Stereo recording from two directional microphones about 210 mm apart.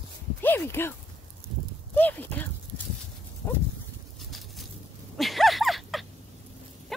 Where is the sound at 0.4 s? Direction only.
10° left (ahead or behind).